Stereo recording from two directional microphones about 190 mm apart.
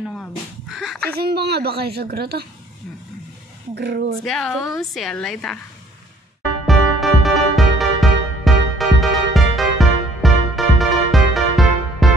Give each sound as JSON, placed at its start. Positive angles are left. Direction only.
{"t": 0.0, "sound": "crow", "side_deg": 0}
{"t": 1.1, "sound": "a woman's voice", "side_deg": -55}
{"t": 3.7, "sound": "a woman's voice", "side_deg": -60}
{"t": 4.2, "sound": "a woman's voice", "side_deg": 0}
{"t": 6.6, "sound": "music", "side_deg": 0}